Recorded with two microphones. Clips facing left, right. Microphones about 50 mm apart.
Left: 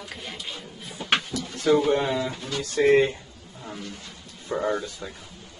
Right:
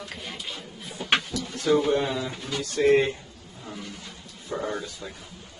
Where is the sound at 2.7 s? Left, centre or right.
Left.